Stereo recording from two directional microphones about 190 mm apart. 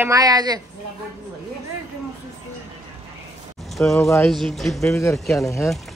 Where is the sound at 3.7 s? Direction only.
Centre (ahead or behind).